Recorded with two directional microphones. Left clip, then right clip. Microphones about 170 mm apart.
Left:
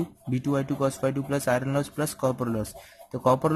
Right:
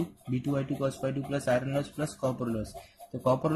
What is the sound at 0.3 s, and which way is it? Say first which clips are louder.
Speech: left 5 dB; 35° left (ahead or behind).